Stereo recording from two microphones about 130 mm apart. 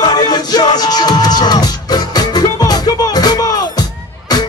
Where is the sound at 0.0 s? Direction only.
30° left (ahead or behind).